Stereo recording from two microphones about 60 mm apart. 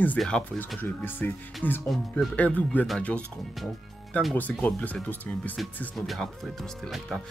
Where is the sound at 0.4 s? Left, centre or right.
Left.